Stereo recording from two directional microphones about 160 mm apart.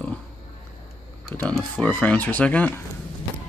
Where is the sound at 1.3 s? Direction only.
10° left (ahead or behind).